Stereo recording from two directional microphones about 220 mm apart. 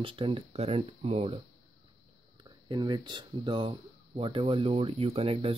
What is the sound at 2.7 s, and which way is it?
Speech, 20° right (ahead or behind).